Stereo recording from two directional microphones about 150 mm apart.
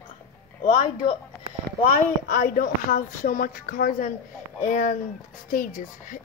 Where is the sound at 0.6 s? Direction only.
45° left (ahead or behind).